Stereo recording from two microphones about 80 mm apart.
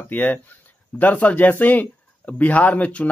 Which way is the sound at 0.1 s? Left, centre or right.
Left.